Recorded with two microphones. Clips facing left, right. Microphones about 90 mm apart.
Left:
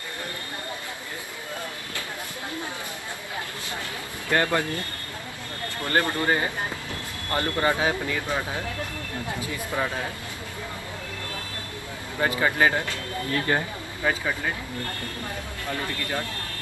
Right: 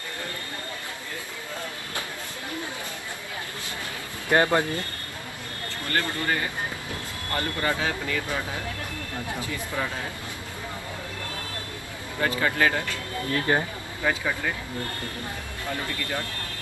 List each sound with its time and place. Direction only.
4.3 s speech: 20° right (ahead or behind)
5.9 s speech: 20° left (ahead or behind)
12.2 s speech: 25° left (ahead or behind)
13.3 s speech: 15° right (ahead or behind)
14.0 s speech: 5° left (ahead or behind)